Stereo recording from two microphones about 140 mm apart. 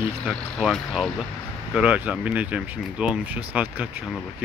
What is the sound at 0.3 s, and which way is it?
Speech, centre (ahead or behind).